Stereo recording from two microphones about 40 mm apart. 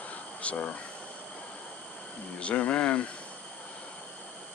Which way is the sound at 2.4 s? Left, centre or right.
Left.